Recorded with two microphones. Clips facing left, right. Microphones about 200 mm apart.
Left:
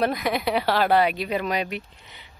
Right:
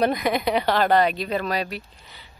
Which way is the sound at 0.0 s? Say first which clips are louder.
Right 2 dB; centre (ahead or behind).